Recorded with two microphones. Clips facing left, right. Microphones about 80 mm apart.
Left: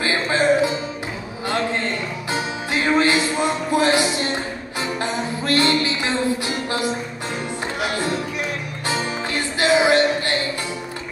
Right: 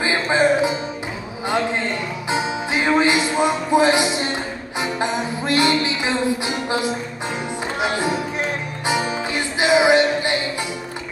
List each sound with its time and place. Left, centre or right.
0.0 s music: right